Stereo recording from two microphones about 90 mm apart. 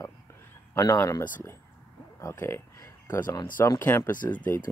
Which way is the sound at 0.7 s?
40° left (ahead or behind).